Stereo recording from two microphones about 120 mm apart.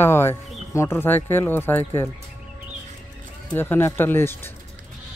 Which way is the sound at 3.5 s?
15° left (ahead or behind).